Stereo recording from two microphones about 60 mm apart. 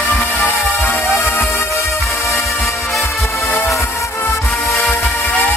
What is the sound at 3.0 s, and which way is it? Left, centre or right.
Music, left.